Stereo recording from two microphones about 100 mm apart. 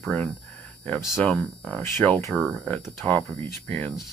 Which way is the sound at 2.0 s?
10° left (ahead or behind).